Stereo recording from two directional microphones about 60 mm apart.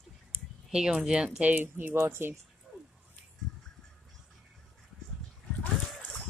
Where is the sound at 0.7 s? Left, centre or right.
Centre.